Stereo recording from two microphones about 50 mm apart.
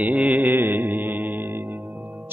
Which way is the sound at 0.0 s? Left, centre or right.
Right.